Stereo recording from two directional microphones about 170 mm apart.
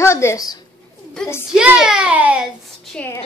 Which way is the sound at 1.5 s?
5° right (ahead or behind).